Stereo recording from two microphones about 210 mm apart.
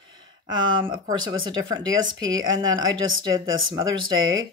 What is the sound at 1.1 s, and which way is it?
Speech, 20° right (ahead or behind).